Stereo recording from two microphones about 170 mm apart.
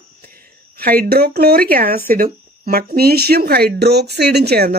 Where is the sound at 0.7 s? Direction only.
65° right (ahead or behind).